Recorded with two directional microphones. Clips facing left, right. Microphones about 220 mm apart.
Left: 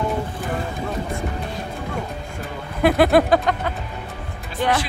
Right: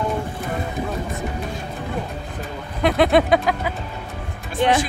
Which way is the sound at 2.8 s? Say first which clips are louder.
Left 1 dB; centre (ahead or behind).